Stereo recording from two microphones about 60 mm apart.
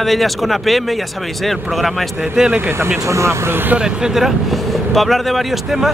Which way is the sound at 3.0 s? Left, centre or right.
Right.